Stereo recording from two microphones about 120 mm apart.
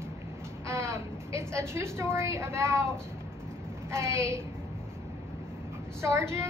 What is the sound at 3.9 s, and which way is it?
Speech, 25° right (ahead or behind).